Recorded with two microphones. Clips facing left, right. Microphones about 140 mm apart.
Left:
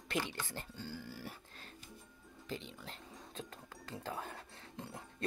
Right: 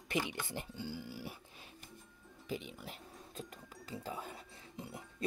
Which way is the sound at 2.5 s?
10° right (ahead or behind).